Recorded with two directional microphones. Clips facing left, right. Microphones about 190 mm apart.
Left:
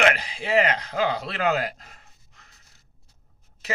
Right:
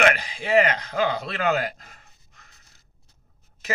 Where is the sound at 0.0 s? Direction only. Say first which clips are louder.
Right 1 dB; 30° left (ahead or behind).